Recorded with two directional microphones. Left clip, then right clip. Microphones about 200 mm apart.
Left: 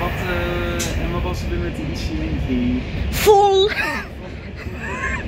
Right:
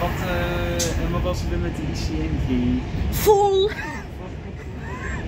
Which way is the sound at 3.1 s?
10° right (ahead or behind).